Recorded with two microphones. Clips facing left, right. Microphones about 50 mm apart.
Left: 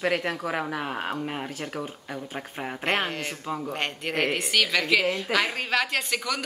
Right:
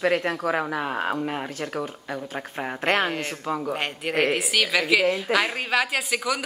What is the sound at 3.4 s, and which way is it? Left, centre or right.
Speech, centre.